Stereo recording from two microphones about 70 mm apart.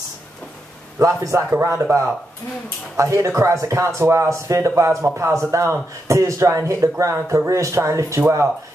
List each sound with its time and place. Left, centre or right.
0.9 s a man's voice: right
1.8 s speech: right
3.0 s a man's voice: right